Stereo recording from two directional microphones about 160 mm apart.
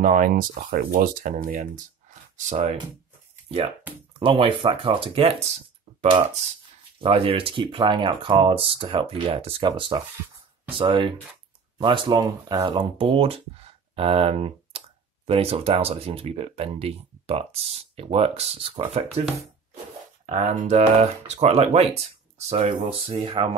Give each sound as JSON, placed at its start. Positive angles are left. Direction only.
{"t": 0.0, "sound": "speech", "side_deg": -55}
{"t": 3.4, "sound": "speech", "side_deg": -35}
{"t": 7.0, "sound": "speech", "side_deg": -35}
{"t": 20.2, "sound": "speech", "side_deg": -45}